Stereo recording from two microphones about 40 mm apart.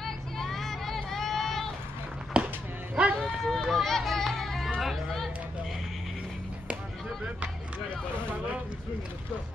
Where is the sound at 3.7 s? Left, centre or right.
Centre.